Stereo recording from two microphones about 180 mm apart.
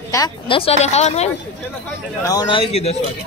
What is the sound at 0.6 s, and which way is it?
Speech, 35° left (ahead or behind).